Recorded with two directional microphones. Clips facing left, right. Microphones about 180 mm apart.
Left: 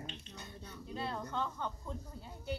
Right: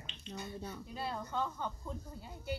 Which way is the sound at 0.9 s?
5° right (ahead or behind).